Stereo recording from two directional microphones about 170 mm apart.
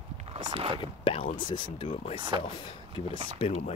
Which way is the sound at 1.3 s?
25° left (ahead or behind).